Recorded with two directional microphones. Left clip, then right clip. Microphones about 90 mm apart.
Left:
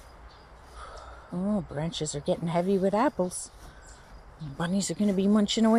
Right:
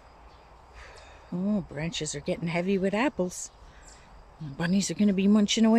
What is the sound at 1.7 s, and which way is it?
Speech, 25° right (ahead or behind).